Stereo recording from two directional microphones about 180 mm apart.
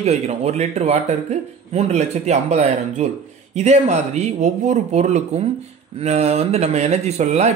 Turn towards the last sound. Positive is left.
turn(degrees=-40)  # may be behind; listen again after turning